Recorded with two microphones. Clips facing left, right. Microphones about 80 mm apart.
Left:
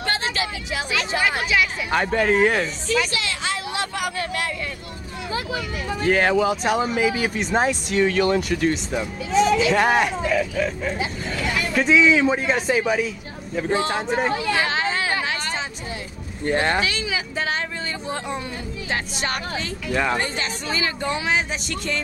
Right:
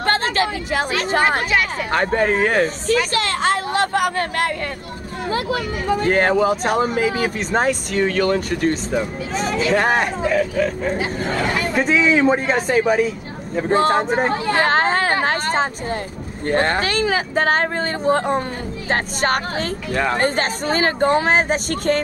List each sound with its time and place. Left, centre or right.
0.0 s speech: right
2.0 s speech: right
5.3 s speech: right